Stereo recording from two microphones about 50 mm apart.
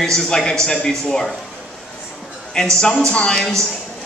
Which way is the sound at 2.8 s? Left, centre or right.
Centre.